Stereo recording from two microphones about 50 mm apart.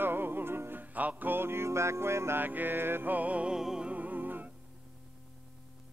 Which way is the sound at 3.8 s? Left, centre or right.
Right.